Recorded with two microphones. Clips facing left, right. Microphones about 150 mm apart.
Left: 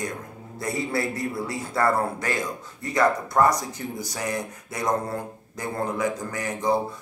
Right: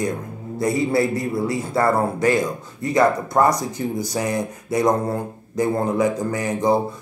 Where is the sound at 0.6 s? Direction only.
15° right (ahead or behind).